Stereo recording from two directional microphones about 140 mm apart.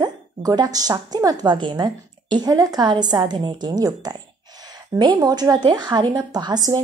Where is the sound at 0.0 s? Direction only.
30° right (ahead or behind).